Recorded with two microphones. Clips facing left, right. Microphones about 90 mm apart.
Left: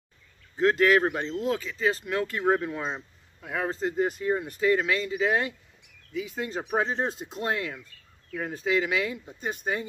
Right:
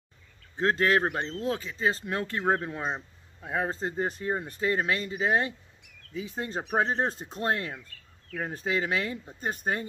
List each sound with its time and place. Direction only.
0.6 s speech: 35° right (ahead or behind)